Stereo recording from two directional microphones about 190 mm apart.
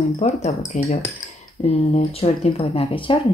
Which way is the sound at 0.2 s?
35° left (ahead or behind).